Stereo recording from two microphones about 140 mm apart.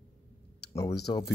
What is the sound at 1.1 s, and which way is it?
Speech, 20° left (ahead or behind).